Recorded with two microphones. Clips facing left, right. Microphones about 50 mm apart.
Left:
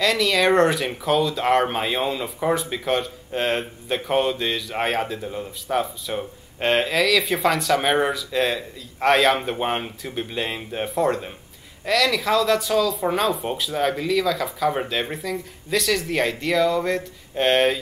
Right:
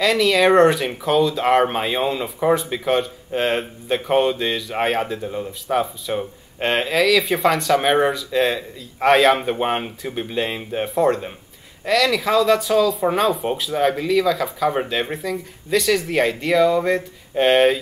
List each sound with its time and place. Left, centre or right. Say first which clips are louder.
0.0 s speech: right 3 dB; centre